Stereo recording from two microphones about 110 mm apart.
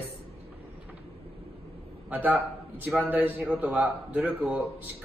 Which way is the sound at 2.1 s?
15° right (ahead or behind).